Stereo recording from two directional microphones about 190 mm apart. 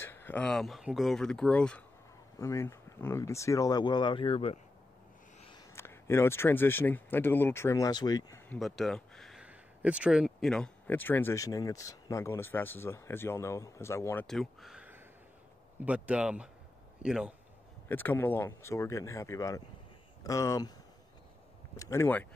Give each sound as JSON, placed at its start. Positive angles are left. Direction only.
{"t": 0.0, "sound": "speech", "side_deg": 10}
{"t": 2.3, "sound": "speech", "side_deg": 15}
{"t": 5.8, "sound": "speech", "side_deg": 15}
{"t": 8.5, "sound": "speech", "side_deg": 0}
{"t": 14.2, "sound": "speech", "side_deg": 0}
{"t": 17.8, "sound": "speech", "side_deg": 10}
{"t": 21.7, "sound": "speech", "side_deg": 15}